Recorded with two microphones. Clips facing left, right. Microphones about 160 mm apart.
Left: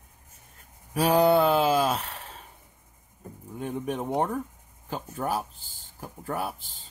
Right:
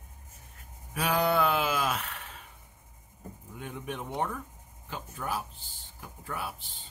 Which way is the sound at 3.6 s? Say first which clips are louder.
Left 8 dB; 40° left (ahead or behind).